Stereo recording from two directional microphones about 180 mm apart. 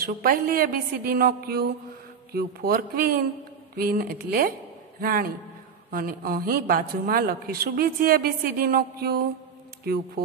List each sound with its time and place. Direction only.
0.0 s a woman's voice: 55° right (ahead or behind)